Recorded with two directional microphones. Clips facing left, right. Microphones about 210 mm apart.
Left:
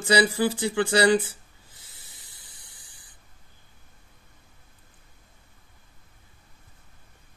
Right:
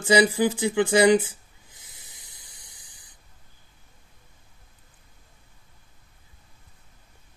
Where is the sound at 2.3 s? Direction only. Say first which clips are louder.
Right 1 dB; 15° right (ahead or behind).